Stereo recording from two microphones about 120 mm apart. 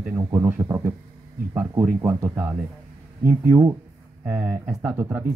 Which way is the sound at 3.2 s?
20° right (ahead or behind).